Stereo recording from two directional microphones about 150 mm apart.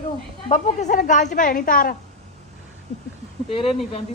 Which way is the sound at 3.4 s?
40° left (ahead or behind).